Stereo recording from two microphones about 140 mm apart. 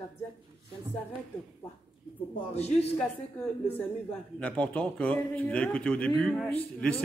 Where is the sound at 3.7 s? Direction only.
10° left (ahead or behind).